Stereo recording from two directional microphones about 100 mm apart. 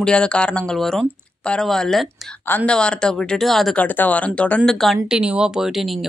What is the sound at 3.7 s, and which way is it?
Speech, 15° left (ahead or behind).